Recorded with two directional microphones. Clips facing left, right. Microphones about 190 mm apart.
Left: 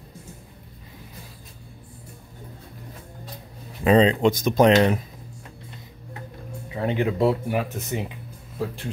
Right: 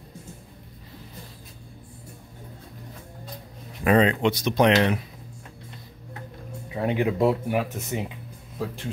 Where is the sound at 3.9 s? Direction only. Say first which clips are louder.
Left 3 dB; 30° left (ahead or behind).